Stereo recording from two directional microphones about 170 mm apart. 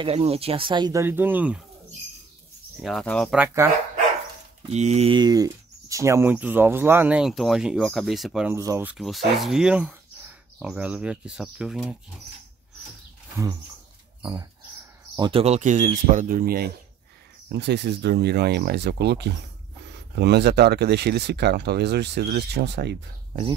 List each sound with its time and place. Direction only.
0.0 s speech: 35° right (ahead or behind)
1.0 s speech: 10° right (ahead or behind)
2.8 s speech: 5° left (ahead or behind)
3.3 s speech: 15° right (ahead or behind)
4.6 s speech: 40° right (ahead or behind)
5.1 s speech: 25° right (ahead or behind); by 8.5 s 5° right (ahead or behind)
8.5 s speech: 15° right (ahead or behind)
8.9 s speech: centre (ahead or behind)
14.2 s speech: 20° right (ahead or behind)
15.4 s speech: 45° right (ahead or behind); by 16.7 s 60° right (ahead or behind)
17.5 s speech: 85° right